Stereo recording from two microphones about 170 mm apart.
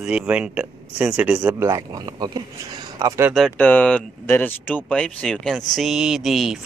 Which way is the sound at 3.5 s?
10° left (ahead or behind).